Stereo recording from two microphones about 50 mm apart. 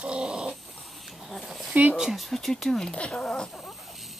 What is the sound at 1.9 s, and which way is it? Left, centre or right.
Speech, centre.